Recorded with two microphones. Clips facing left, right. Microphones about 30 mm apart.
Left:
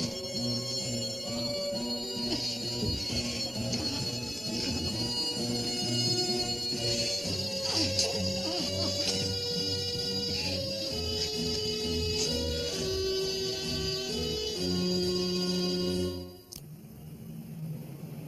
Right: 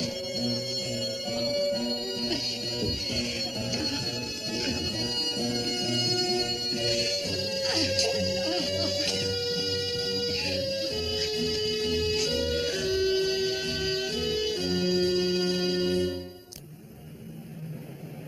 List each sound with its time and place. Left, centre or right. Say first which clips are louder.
0.0 s music: right 3 dB; right